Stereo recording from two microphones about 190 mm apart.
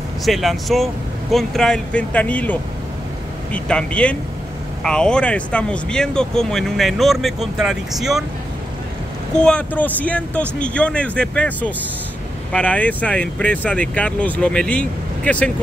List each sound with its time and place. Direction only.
0.2 s speech: centre (ahead or behind)
9.4 s speech: 5° left (ahead or behind)